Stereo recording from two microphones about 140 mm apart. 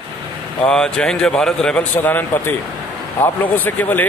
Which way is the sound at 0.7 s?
5° left (ahead or behind).